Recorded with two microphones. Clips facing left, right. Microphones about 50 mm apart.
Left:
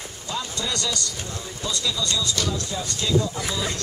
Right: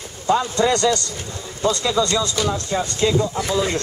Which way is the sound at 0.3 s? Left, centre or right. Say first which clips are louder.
Right 12 dB; right.